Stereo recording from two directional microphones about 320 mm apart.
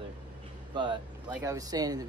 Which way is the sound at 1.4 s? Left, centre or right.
Centre.